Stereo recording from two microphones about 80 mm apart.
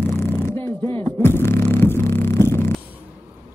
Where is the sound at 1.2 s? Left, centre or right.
Left.